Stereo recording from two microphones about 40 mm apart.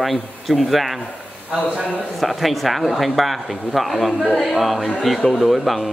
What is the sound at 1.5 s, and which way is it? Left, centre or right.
Speech, right.